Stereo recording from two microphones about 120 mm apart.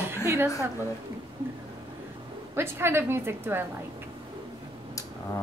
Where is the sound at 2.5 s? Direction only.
20° right (ahead or behind).